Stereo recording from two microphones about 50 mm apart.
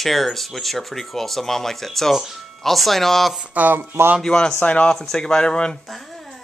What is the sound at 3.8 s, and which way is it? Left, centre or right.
Speech, right.